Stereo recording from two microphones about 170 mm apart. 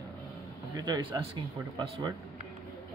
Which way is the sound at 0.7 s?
25° right (ahead or behind).